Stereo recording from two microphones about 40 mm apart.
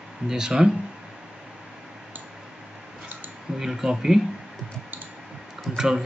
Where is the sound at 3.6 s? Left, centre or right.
Centre.